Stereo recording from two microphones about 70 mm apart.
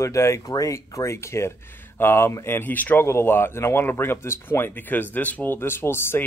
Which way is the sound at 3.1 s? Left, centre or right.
Left.